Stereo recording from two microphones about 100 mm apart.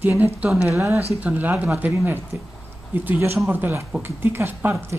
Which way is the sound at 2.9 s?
20° right (ahead or behind).